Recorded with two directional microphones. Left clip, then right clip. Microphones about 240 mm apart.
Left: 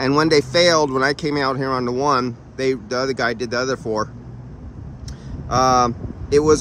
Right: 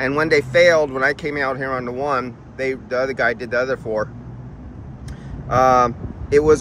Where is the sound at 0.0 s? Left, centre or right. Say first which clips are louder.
Left 1 dB; left.